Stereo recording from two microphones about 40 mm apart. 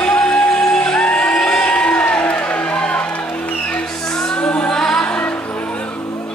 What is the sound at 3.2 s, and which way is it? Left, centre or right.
Music, left.